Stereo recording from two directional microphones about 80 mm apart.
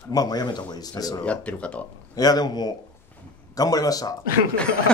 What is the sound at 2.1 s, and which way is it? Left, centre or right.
Speech, left.